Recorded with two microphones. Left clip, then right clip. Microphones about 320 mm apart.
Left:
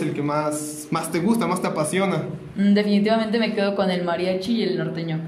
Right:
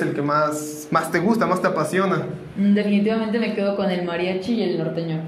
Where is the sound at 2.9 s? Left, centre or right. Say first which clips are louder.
Left 1 dB; left.